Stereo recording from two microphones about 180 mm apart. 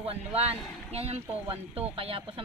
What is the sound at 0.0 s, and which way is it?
Speech, 35° right (ahead or behind).